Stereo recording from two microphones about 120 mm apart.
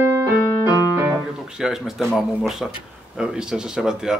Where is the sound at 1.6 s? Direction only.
5° right (ahead or behind).